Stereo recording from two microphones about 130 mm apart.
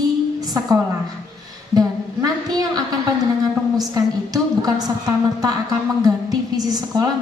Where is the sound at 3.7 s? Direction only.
30° right (ahead or behind).